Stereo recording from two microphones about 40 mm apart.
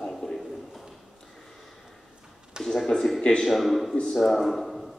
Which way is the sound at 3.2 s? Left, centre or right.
Centre.